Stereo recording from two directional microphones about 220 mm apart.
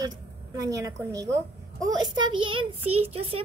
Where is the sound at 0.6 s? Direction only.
15° right (ahead or behind).